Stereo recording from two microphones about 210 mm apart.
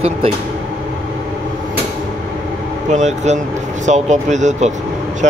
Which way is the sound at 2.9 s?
35° right (ahead or behind).